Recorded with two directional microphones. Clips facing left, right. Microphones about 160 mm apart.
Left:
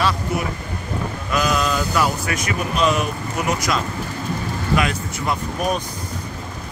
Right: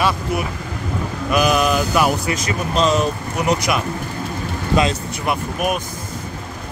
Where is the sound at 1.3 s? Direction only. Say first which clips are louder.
Right 4 dB; 15° right (ahead or behind).